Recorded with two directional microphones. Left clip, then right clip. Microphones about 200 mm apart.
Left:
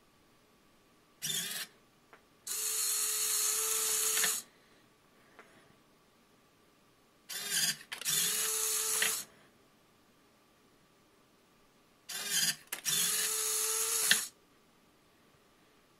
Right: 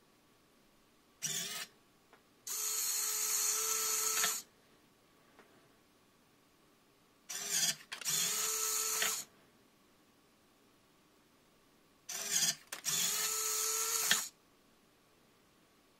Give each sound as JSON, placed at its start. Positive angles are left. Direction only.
{"t": 1.3, "sound": "a sound", "side_deg": -10}
{"t": 2.4, "sound": "tools", "side_deg": -10}
{"t": 7.4, "sound": "drill", "side_deg": -10}
{"t": 12.1, "sound": "printer", "side_deg": -15}